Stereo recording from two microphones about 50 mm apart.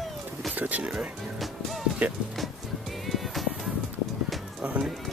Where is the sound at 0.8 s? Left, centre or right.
Right.